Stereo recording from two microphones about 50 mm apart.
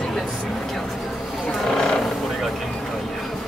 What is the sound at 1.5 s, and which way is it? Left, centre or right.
Wild animals, centre.